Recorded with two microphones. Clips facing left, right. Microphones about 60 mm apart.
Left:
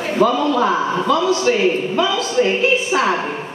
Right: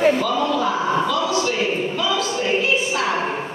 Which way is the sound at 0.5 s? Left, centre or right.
Left.